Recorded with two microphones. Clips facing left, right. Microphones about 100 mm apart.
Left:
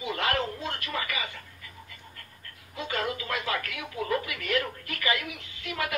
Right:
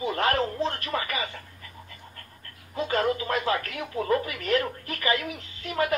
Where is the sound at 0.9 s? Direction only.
35° right (ahead or behind).